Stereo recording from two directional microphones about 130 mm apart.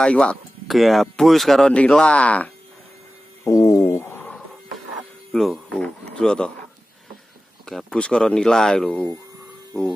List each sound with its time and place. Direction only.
0.0 s speech: 10° left (ahead or behind)
3.4 s a sound: 25° left (ahead or behind); by 4.8 s 10° left (ahead or behind)
5.3 s speech: centre (ahead or behind)
7.6 s speech: 5° left (ahead or behind)